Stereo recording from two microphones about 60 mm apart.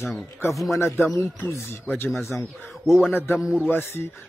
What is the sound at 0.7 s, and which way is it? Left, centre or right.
Speech, left.